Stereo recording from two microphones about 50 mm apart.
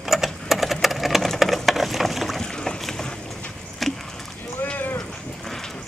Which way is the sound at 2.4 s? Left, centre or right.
Centre.